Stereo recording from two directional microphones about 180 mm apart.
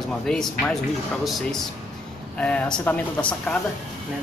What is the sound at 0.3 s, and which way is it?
Speech, 5° left (ahead or behind).